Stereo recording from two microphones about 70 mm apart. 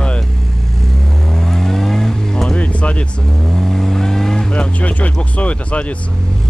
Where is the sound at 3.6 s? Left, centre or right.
Centre.